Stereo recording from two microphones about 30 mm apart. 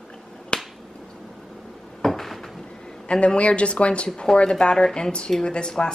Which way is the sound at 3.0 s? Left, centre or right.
Left.